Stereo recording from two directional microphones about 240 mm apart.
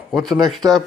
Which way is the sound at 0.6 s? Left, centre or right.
Centre.